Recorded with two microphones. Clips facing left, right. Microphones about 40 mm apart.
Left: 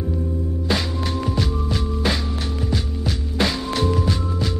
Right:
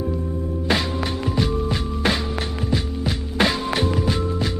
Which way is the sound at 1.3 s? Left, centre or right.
Centre.